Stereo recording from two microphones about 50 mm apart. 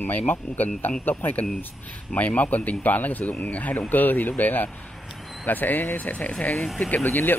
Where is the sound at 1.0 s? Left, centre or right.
Left.